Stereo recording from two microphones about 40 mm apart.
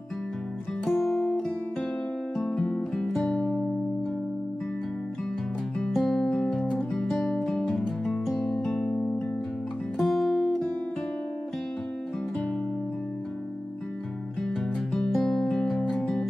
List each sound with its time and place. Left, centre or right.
0.8 s music: centre
2.5 s music: left
5.8 s music: centre
6.3 s music: centre
8.4 s music: centre
9.9 s guitar: centre
15.0 s music: centre